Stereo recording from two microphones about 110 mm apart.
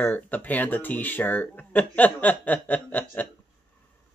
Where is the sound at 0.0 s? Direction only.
15° left (ahead or behind).